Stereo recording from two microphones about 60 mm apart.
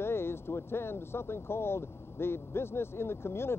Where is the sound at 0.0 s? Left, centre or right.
Left.